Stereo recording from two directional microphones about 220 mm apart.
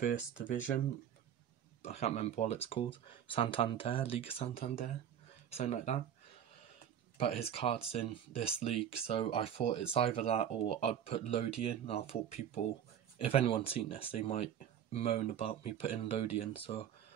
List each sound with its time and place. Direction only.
0.0 s speech: 35° left (ahead or behind)
7.2 s speech: 25° left (ahead or behind)